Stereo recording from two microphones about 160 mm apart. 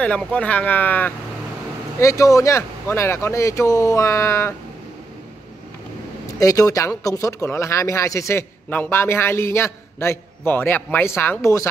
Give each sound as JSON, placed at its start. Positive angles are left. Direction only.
{"t": 0.0, "sound": "speech", "side_deg": 5}
{"t": 6.4, "sound": "speech", "side_deg": 20}